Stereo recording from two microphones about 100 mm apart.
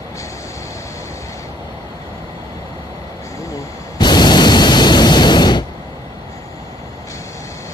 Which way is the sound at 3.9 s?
45° left (ahead or behind).